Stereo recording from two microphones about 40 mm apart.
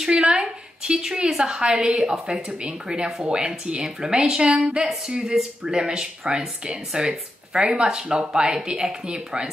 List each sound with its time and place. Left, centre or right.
0.1 s a woman's voice: right